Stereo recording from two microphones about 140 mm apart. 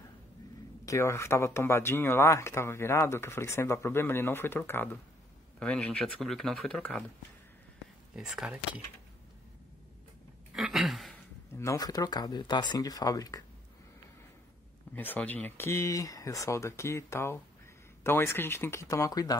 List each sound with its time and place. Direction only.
0.8 s speech: 20° left (ahead or behind)
8.1 s speech: 5° right (ahead or behind)
10.5 s a sound: centre (ahead or behind)
11.5 s speech: 20° left (ahead or behind)
15.0 s speech: 10° left (ahead or behind)